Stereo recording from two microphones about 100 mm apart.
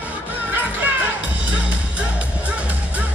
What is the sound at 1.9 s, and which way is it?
Music, 15° right (ahead or behind).